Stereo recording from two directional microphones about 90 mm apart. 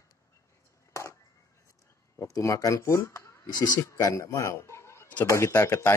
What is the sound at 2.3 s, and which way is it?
Speech, 40° left (ahead or behind).